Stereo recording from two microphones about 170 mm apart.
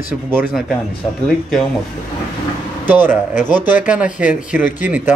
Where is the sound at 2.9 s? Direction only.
10° right (ahead or behind).